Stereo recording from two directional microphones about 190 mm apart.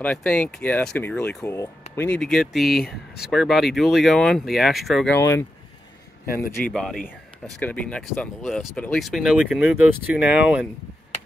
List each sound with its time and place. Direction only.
0.0 s speech: 5° left (ahead or behind)
5.1 s speech: 15° left (ahead or behind)
6.3 s a man's voice: 50° left (ahead or behind)
6.7 s speech: 5° left (ahead or behind)